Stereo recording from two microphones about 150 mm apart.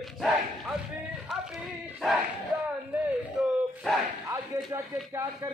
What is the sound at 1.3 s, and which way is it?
Bow-wow, centre (ahead or behind).